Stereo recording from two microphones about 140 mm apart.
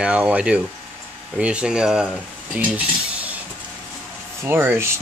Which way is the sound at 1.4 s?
10° right (ahead or behind).